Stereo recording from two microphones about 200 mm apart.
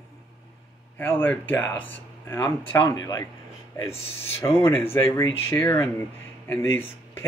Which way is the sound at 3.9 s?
30° left (ahead or behind).